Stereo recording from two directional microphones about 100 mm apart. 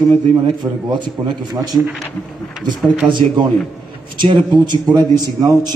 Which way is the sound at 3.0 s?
50° right (ahead or behind).